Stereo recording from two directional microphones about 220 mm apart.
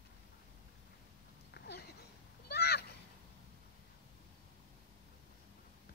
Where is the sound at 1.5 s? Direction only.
45° left (ahead or behind).